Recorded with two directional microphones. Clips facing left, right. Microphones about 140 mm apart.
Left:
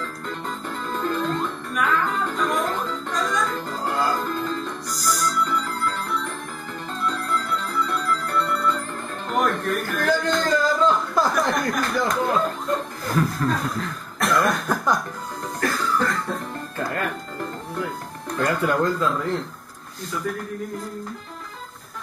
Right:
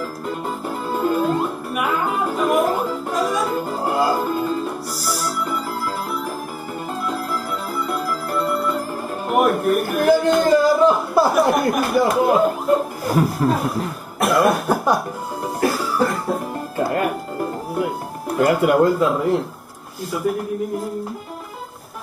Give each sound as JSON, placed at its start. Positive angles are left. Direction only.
{"t": 0.3, "sound": "music", "side_deg": -10}
{"t": 9.3, "sound": "a sound", "side_deg": -10}
{"t": 11.5, "sound": "speech", "side_deg": -10}
{"t": 12.2, "sound": "chuckle", "side_deg": -10}
{"t": 13.6, "sound": "cough", "side_deg": -15}
{"t": 14.5, "sound": "cough", "side_deg": -30}
{"t": 15.8, "sound": "music", "side_deg": -10}
{"t": 18.9, "sound": "speech", "side_deg": -15}